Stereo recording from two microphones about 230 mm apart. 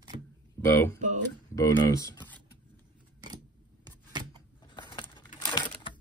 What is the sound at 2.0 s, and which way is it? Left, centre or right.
Computer keyboard, centre.